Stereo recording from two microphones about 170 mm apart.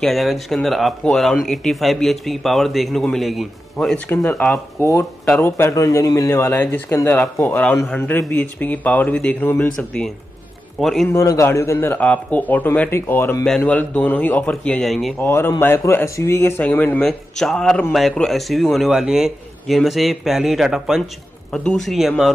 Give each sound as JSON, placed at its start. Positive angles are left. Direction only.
{"t": 0.0, "sound": "a man's voice", "side_deg": 0}
{"t": 5.6, "sound": "a man's voice", "side_deg": 15}
{"t": 11.1, "sound": "speech", "side_deg": 20}
{"t": 15.2, "sound": "a man's voice", "side_deg": 15}